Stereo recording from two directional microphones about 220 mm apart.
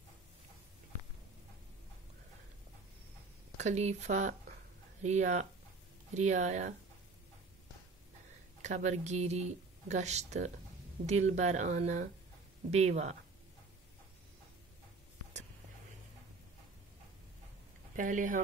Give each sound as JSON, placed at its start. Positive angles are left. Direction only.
{"t": 3.5, "sound": "speech", "side_deg": -30}
{"t": 8.6, "sound": "speech", "side_deg": -30}
{"t": 17.9, "sound": "speech", "side_deg": -35}